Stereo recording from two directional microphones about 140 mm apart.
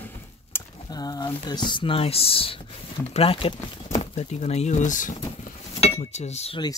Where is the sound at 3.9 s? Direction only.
55° left (ahead or behind).